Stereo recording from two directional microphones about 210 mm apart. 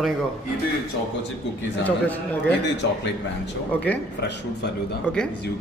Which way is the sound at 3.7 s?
5° left (ahead or behind).